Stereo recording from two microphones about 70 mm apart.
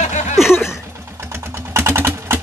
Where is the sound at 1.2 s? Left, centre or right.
Right.